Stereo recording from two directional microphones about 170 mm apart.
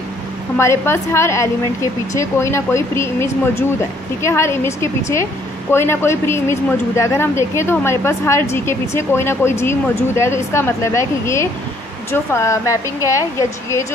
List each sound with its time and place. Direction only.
0.6 s speech: 15° left (ahead or behind)